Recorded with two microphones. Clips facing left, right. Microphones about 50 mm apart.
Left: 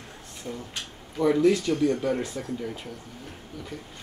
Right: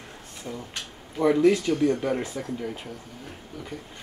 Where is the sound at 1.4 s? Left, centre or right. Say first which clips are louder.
Right 1 dB; right.